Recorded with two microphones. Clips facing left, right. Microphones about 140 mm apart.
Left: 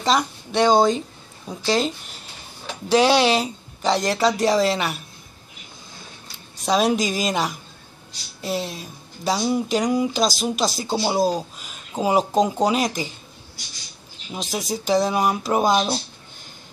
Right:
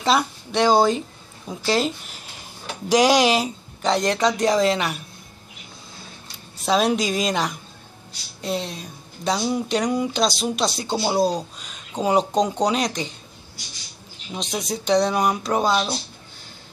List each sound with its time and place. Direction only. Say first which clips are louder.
0.0 s speech: even; 5° right (ahead or behind)
3.8 s speech: even; centre (ahead or behind)
6.2 s speech: even; centre (ahead or behind)
14.3 s speech: left 1 dB; centre (ahead or behind)
15.7 s speech: left 2 dB; 20° left (ahead or behind)